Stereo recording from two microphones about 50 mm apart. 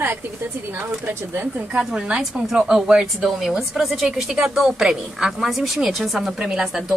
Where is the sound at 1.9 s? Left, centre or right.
Centre.